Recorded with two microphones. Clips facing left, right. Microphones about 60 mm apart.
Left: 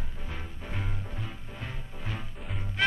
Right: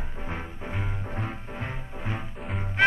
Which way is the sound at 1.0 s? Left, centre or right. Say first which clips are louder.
Right 7 dB; right.